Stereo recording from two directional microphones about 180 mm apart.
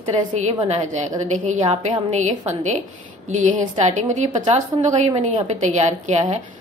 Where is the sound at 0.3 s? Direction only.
40° right (ahead or behind).